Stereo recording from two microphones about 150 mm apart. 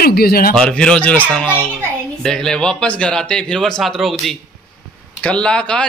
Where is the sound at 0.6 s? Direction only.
5° left (ahead or behind).